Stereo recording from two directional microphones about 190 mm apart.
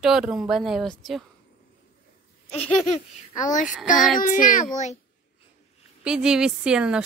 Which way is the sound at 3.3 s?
40° left (ahead or behind).